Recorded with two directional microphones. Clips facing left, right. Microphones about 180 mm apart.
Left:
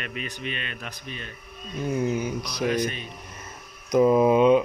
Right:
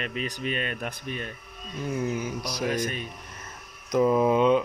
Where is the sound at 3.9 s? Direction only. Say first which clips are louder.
Left 3 dB; 15° left (ahead or behind).